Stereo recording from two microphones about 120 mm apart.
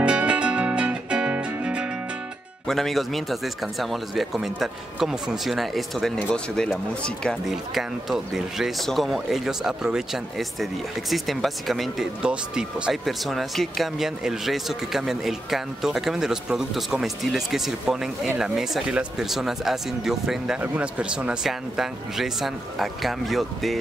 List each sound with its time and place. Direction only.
0.0 s music: 10° right (ahead or behind)
2.7 s speech: centre (ahead or behind)